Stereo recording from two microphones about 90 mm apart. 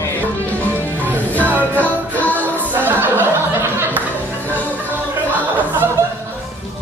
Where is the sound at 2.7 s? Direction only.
20° right (ahead or behind).